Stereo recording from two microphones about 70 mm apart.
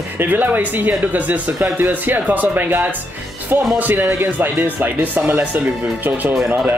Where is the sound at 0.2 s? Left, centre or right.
Right.